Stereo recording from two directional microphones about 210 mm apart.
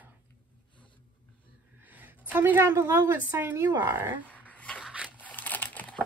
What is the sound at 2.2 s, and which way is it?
Speech, 10° right (ahead or behind).